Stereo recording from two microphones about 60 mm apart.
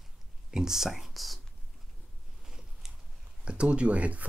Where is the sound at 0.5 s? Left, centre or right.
Centre.